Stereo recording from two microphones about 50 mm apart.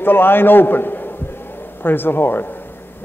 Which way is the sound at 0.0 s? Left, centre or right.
Left.